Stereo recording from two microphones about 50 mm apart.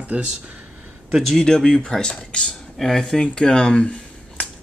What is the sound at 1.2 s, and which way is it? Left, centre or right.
Speech, centre.